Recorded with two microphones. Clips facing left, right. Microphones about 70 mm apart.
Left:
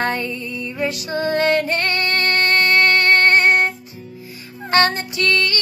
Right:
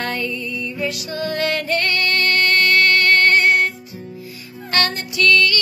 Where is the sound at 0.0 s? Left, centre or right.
Left.